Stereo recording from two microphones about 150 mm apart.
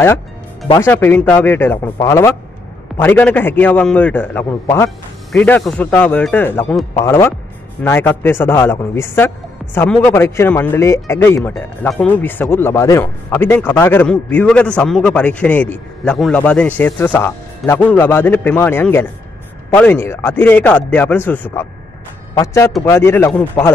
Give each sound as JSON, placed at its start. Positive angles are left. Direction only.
{"t": 0.7, "sound": "a man's voice", "side_deg": 15}
{"t": 5.3, "sound": "a man's voice", "side_deg": 5}